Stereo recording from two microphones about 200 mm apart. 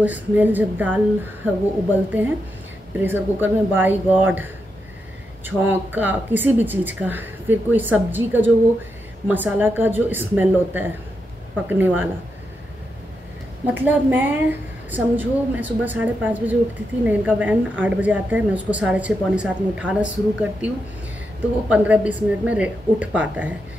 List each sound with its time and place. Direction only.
0.0 s a woman's voice: 10° right (ahead or behind)
5.7 s a woman's voice: 10° right (ahead or behind)
13.7 s a woman's voice: 10° right (ahead or behind)